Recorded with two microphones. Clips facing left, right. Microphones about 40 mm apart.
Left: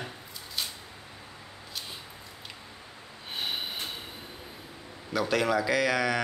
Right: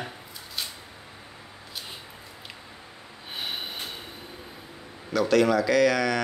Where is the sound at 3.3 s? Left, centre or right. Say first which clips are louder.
Even; centre.